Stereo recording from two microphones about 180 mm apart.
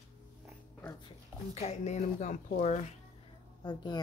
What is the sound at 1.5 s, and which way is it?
Speech, 35° left (ahead or behind).